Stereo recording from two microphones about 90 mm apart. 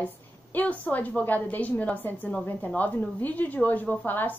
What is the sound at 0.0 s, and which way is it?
A woman's voice, 20° left (ahead or behind).